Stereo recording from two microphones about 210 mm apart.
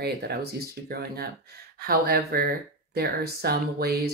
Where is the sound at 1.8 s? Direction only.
45° right (ahead or behind).